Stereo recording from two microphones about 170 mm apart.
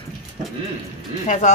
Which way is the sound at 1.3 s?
45° left (ahead or behind).